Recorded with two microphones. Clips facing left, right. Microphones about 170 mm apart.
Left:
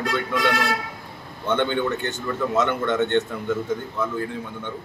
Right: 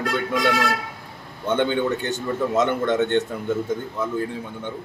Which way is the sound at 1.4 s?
15° right (ahead or behind).